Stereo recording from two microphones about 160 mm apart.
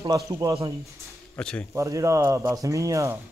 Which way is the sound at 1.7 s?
20° right (ahead or behind).